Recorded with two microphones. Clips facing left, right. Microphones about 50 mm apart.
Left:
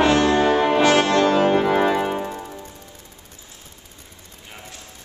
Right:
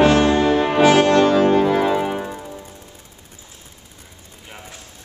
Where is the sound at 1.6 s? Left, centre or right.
Centre.